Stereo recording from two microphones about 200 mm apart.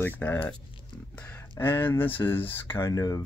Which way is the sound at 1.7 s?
25° left (ahead or behind).